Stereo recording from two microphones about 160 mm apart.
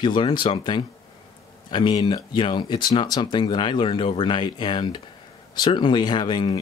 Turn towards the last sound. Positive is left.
turn(degrees=30)  # may be behind; listen again after turning